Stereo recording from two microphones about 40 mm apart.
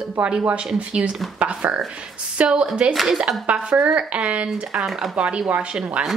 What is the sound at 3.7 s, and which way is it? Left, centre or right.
Speech, right.